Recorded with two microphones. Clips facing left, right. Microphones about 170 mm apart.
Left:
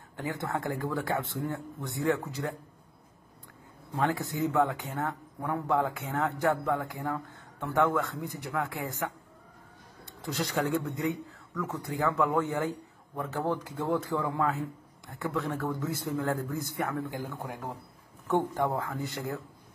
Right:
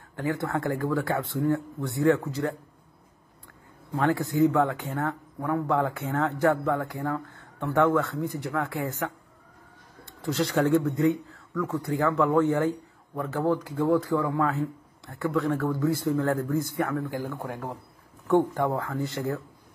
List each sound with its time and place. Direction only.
0.1 s speech: 20° left (ahead or behind)
4.0 s speech: 20° left (ahead or behind)
10.3 s speech: 15° left (ahead or behind)